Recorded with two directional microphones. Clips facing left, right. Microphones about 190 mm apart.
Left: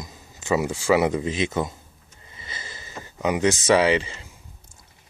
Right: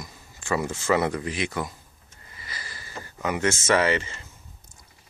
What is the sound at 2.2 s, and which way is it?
Sniff, 25° left (ahead or behind).